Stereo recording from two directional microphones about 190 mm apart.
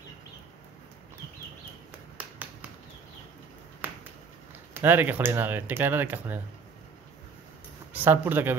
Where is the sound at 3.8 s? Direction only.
10° right (ahead or behind).